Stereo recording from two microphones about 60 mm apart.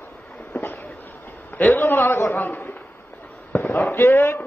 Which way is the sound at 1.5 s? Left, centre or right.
Left.